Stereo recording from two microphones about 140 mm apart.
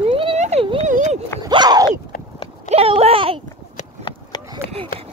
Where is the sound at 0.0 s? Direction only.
40° right (ahead or behind).